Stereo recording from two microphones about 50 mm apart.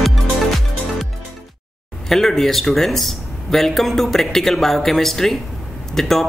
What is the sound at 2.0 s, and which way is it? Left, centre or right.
Speech, centre.